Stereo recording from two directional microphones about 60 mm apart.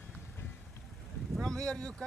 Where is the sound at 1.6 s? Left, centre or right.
Centre.